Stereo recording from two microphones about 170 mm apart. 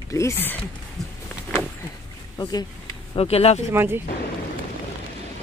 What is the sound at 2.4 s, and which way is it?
Speech, 25° left (ahead or behind).